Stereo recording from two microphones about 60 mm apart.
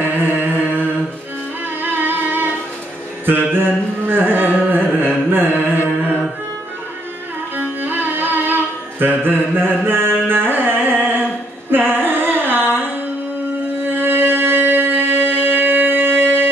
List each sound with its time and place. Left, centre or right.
0.4 s mantra: right
1.8 s a sound: right
3.3 s carnatic music: right
7.5 s music: right
13.8 s music: right